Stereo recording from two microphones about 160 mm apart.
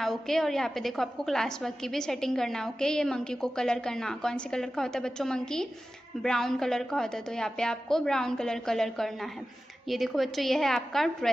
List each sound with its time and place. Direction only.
0.0 s a woman's voice: centre (ahead or behind)